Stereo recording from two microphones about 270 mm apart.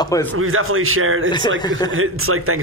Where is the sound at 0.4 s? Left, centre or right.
Right.